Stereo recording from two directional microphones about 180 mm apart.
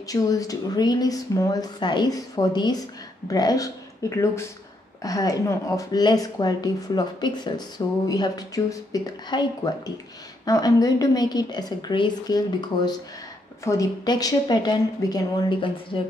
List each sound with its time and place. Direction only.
0.1 s a woman's voice: 20° left (ahead or behind)